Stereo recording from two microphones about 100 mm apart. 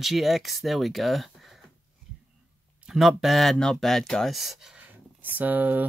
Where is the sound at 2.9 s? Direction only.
Centre (ahead or behind).